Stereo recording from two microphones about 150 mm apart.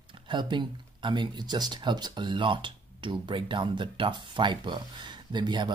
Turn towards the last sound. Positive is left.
turn(degrees=-30)  # may be behind; listen again after turning